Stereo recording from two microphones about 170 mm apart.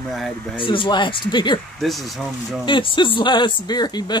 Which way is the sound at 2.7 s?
30° left (ahead or behind).